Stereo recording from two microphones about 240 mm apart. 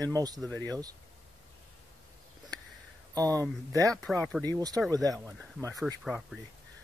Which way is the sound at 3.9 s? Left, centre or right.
Centre.